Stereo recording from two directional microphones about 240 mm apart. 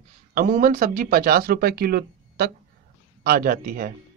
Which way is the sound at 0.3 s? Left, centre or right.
Right.